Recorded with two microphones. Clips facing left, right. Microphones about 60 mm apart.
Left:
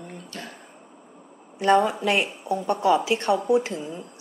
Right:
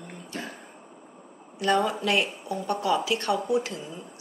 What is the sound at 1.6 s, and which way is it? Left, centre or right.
A woman's voice, left.